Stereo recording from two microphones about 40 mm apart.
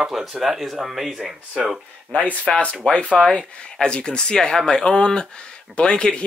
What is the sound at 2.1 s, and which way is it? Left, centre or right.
Speech, left.